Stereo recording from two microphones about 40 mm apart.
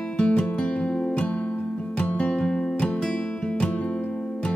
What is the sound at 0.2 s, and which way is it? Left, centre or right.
Music, left.